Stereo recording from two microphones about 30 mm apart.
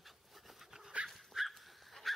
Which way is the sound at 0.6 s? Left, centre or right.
Centre.